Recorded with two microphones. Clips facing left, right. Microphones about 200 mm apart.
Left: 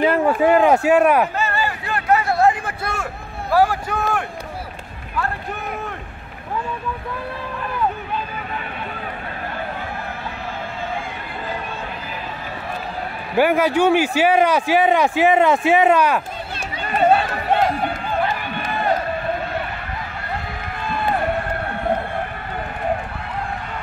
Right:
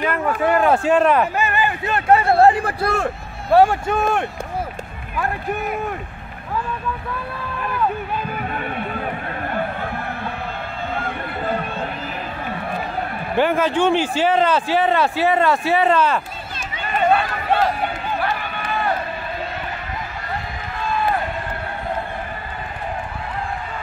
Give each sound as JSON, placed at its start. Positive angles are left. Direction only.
{"t": 0.0, "sound": "speech", "side_deg": 30}
{"t": 0.4, "sound": "speech", "side_deg": 15}
{"t": 1.3, "sound": "a sound", "side_deg": -15}
{"t": 2.4, "sound": "a man's voice", "side_deg": -35}
{"t": 13.4, "sound": "speech", "side_deg": 10}